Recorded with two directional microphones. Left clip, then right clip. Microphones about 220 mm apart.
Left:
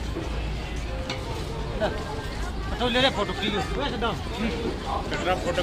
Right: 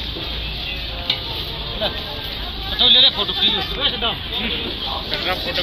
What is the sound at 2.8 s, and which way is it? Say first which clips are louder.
Speech: right 10 dB; 20° left (ahead or behind).